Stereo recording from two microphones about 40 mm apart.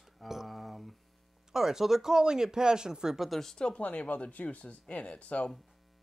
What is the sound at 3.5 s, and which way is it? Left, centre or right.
Speech, left.